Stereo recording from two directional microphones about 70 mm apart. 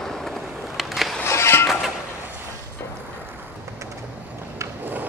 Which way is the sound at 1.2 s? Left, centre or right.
Left.